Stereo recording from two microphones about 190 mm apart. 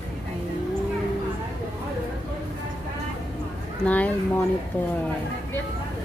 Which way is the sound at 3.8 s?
5° left (ahead or behind).